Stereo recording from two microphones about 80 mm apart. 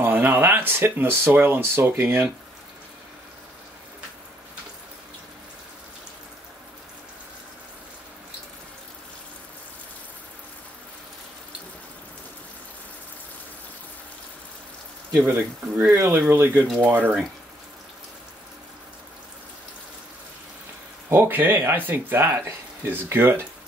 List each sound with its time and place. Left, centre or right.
0.0 s speech: right
15.9 s speech: right
21.1 s speech: right